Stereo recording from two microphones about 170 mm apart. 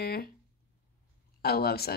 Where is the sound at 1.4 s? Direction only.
65° left (ahead or behind).